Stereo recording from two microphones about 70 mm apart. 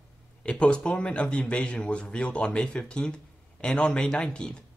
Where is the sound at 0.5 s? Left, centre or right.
Centre.